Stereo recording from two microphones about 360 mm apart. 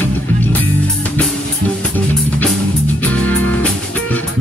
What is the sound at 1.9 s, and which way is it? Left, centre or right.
Music, centre.